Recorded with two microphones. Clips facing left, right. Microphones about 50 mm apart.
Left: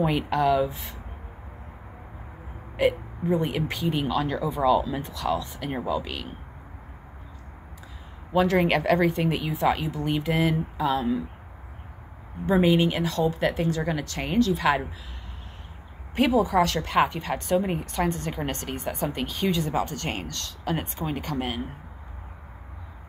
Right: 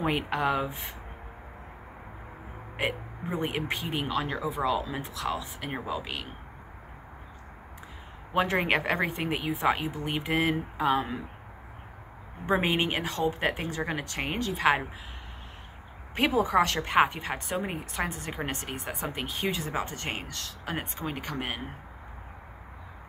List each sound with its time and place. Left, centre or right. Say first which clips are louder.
0.0 s speech: left 4 dB; right
2.8 s speech: left 8 dB; right
8.4 s speech: left 4 dB; right
12.4 s speech: left 5 dB; right
16.2 s speech: left 3 dB; right; by 19.4 s centre
19.7 s speech: left 5 dB; right
21.1 s speech: left 5 dB; right